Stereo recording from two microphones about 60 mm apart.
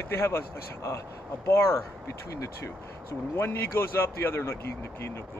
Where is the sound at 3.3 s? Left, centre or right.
Left.